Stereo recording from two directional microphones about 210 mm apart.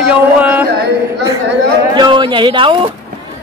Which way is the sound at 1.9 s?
20° right (ahead or behind).